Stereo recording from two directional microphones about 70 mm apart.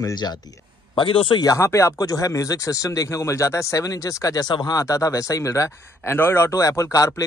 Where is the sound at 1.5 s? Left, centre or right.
Left.